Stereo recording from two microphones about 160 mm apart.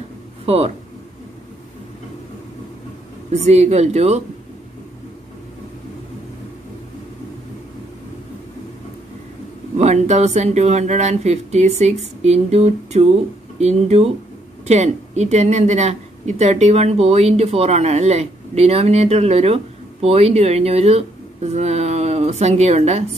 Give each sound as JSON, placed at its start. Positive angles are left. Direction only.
{"t": 0.5, "sound": "speech", "side_deg": -40}
{"t": 3.3, "sound": "speech", "side_deg": -45}
{"t": 9.8, "sound": "speech", "side_deg": -45}